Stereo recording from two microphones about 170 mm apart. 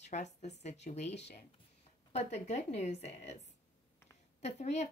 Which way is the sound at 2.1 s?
40° left (ahead or behind).